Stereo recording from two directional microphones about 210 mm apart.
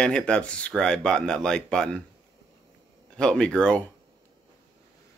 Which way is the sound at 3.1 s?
5° left (ahead or behind).